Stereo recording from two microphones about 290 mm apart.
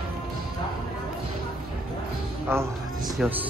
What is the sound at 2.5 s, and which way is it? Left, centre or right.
Speech, centre.